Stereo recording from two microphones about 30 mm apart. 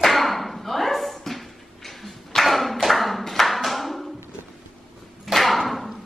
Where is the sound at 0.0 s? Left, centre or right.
Centre.